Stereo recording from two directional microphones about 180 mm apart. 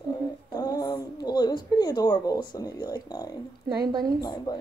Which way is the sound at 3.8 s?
20° right (ahead or behind).